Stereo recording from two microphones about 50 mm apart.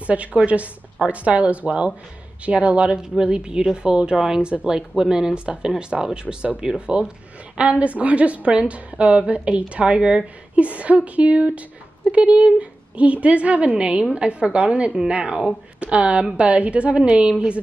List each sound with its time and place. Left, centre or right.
0.0 s a woman's voice: right